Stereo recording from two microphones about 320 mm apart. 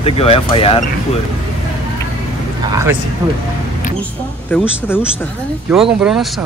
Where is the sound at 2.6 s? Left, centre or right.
Centre.